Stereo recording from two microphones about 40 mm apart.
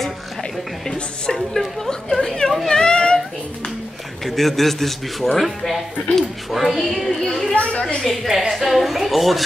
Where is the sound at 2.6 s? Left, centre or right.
Centre.